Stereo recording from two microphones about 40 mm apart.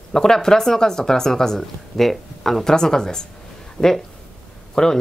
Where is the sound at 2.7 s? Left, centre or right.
Centre.